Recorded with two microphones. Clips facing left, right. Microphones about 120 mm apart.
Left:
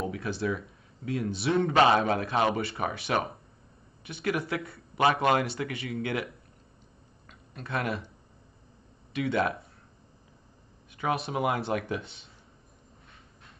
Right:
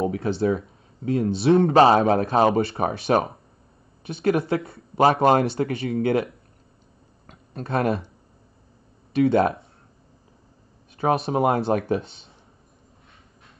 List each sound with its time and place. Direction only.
0.0 s speech: 30° right (ahead or behind)
9.1 s speech: 30° right (ahead or behind)
11.0 s speech: 30° right (ahead or behind)